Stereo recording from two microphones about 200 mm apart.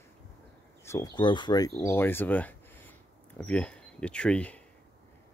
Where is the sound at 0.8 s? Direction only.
15° left (ahead or behind).